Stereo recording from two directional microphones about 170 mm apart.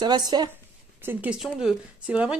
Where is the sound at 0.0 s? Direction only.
25° right (ahead or behind).